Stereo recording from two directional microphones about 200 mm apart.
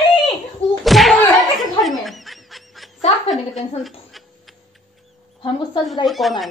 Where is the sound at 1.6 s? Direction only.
Centre (ahead or behind).